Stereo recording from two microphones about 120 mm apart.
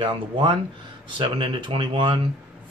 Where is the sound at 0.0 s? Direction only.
45° right (ahead or behind).